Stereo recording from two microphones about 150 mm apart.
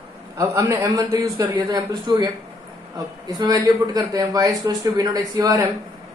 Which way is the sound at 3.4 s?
25° right (ahead or behind).